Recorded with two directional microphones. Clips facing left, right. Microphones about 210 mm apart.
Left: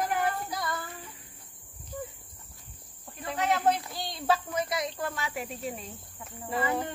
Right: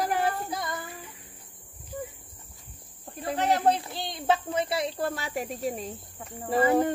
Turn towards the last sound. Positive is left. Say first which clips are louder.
# right 8 dB
turn(degrees=-45)  # may be behind; listen again after turning